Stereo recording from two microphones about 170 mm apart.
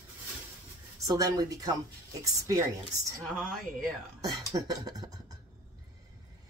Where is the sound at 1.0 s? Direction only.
20° right (ahead or behind).